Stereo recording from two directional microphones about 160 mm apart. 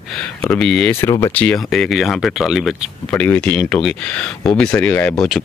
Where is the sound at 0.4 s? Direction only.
5° left (ahead or behind).